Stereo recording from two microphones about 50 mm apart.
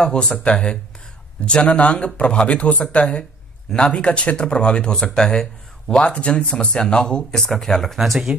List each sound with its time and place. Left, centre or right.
0.0 s speech: centre